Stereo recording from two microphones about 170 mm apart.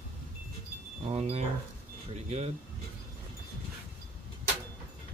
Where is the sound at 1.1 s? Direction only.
35° right (ahead or behind).